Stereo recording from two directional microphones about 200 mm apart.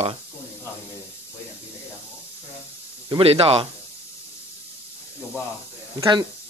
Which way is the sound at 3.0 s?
30° right (ahead or behind).